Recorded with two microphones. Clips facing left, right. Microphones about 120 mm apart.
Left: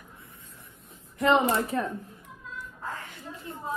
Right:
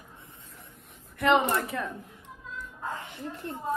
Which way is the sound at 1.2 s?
35° left (ahead or behind).